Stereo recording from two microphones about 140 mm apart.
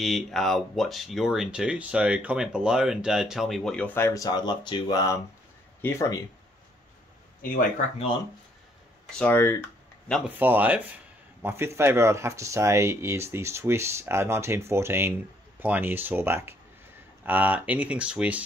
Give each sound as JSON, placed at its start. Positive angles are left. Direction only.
{"t": 0.0, "sound": "speech", "side_deg": 0}
{"t": 9.1, "sound": "speech", "side_deg": 10}
{"t": 10.2, "sound": "speech", "side_deg": -15}